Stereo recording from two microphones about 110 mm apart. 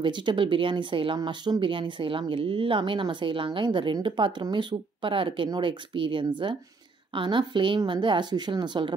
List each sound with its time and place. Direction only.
0.0 s speech: 45° right (ahead or behind)